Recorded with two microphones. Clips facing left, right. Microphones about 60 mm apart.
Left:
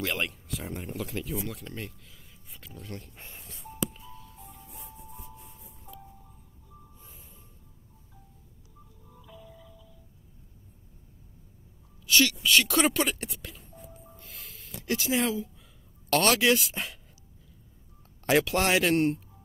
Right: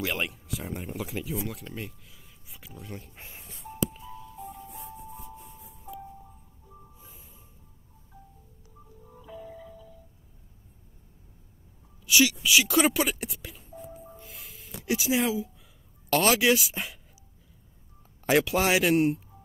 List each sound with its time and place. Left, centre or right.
0.0 s speech: centre
9.1 s music: right
12.1 s speech: centre
14.2 s music: centre
16.1 s speech: centre
18.2 s speech: centre